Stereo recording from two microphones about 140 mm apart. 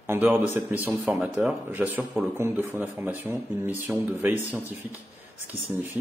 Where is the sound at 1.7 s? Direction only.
10° right (ahead or behind).